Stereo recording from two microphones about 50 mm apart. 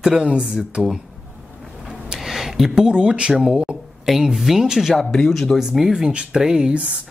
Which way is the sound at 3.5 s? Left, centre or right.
Centre.